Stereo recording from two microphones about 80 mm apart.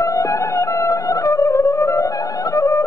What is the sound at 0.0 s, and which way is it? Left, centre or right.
Music, left.